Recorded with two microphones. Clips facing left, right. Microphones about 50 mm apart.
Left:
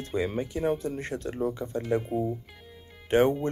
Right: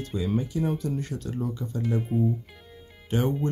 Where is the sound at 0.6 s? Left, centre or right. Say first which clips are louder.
Left 1 dB; left.